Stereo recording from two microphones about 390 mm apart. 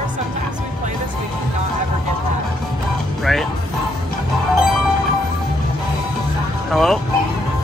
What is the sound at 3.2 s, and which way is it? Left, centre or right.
Speech, centre.